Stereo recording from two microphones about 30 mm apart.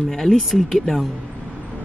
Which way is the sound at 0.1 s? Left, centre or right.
Centre.